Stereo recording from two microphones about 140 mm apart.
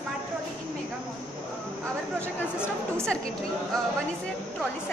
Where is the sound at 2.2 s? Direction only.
15° left (ahead or behind).